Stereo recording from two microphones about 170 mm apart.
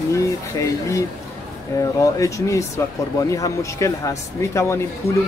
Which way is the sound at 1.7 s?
20° left (ahead or behind).